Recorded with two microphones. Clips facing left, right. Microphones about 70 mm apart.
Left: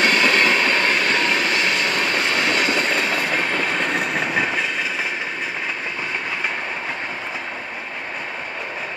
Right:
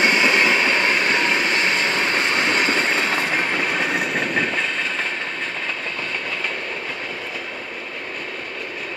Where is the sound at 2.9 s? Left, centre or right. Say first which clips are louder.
Even; centre.